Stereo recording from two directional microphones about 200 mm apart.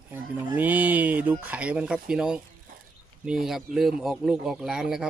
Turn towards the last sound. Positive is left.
turn(degrees=-5)  # may be behind; listen again after turning